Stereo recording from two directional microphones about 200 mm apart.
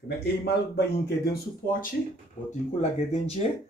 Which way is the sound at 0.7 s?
55° left (ahead or behind).